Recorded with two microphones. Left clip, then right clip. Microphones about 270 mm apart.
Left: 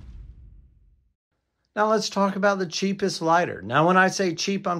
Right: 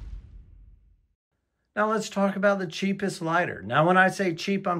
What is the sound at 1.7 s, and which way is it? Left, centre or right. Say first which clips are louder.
Speech: left 4 dB; centre.